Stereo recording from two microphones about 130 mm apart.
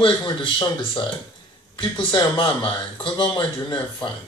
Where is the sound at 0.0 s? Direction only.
35° left (ahead or behind).